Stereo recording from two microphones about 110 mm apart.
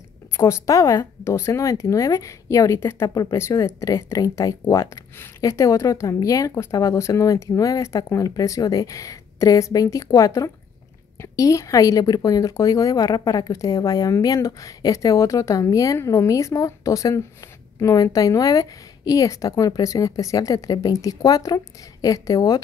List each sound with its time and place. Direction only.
0.4 s a woman's voice: 30° left (ahead or behind)